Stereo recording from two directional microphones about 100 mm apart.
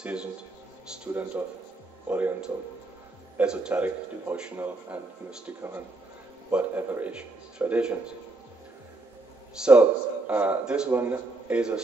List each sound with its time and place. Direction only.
0.0 s a man's voice: 10° right (ahead or behind)
9.7 s a man's voice: 15° right (ahead or behind)